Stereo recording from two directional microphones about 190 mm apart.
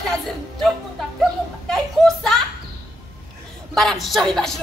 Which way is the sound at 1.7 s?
Centre (ahead or behind).